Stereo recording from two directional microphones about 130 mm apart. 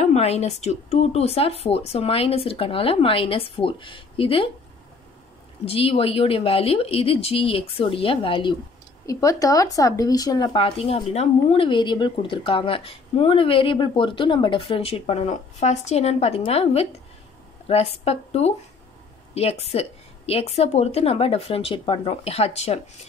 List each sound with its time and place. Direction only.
0.0 s speech: 55° left (ahead or behind)
5.7 s speech: 45° left (ahead or behind)
9.0 s speech: 25° left (ahead or behind); by 23.0 s 55° left (ahead or behind)